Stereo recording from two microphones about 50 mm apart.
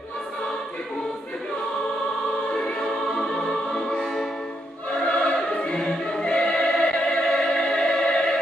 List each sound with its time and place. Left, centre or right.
2.9 s music: centre
5.0 s choir: left
5.6 s music: centre
7.1 s opera: centre